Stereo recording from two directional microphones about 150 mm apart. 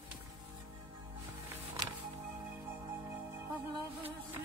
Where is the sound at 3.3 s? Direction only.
15° right (ahead or behind).